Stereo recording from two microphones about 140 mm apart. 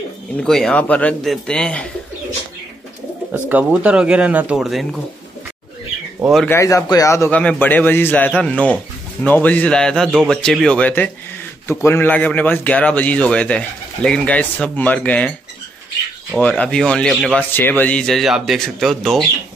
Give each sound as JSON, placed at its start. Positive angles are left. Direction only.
{"t": 0.4, "sound": "a man's voice", "side_deg": 5}
{"t": 3.3, "sound": "speech", "side_deg": -10}
{"t": 6.4, "sound": "a man's voice", "side_deg": 20}
{"t": 7.2, "sound": "a man's voice", "side_deg": 10}
{"t": 16.3, "sound": "speech", "side_deg": 10}